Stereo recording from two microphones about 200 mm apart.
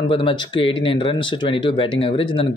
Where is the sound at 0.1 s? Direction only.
25° left (ahead or behind).